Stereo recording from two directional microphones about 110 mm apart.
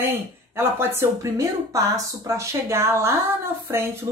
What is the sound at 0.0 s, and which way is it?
Speech, 20° right (ahead or behind).